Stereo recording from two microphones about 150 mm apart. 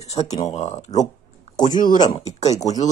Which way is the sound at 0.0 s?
45° left (ahead or behind).